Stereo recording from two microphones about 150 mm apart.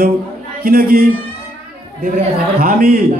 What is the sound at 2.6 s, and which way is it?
Speech, 80° right.